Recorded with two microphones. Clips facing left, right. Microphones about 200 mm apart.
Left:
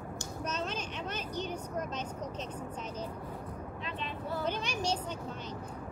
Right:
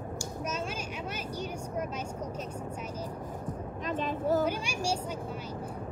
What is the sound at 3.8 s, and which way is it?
Vehicle, 45° right (ahead or behind).